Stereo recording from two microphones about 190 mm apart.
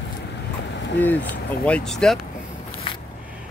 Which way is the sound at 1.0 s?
10° left (ahead or behind).